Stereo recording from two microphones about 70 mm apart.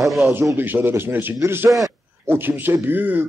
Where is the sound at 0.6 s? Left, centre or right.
Right.